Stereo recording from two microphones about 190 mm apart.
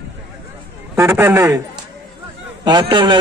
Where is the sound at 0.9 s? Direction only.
15° right (ahead or behind).